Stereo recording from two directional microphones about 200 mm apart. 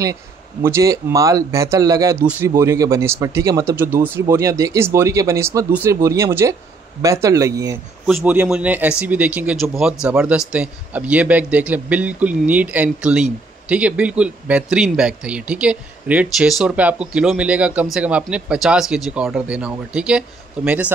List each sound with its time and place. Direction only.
0.0 s a man's voice: 15° right (ahead or behind)
8.1 s a man's voice: 5° right (ahead or behind)